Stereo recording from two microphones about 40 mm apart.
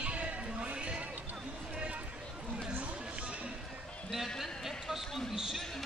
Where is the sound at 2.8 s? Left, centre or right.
Right.